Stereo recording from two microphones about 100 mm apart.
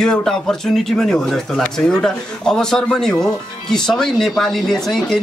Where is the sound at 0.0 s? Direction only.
5° left (ahead or behind).